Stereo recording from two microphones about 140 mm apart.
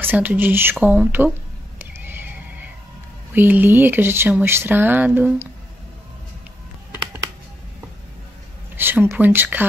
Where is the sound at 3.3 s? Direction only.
15° right (ahead or behind).